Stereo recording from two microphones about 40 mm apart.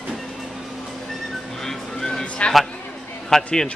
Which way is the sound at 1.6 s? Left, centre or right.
Centre.